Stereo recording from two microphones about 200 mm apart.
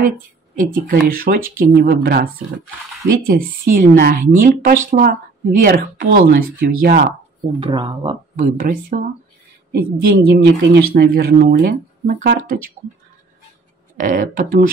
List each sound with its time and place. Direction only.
0.6 s speech: 45° right (ahead or behind)
3.6 s speech: 45° right (ahead or behind)
7.6 s speech: 25° right (ahead or behind)
8.4 s speech: 40° right (ahead or behind)
9.7 s speech: 50° right (ahead or behind)
13.9 s speech: 40° right (ahead or behind)